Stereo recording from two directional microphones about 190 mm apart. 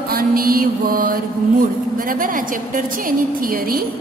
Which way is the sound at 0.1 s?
50° right (ahead or behind).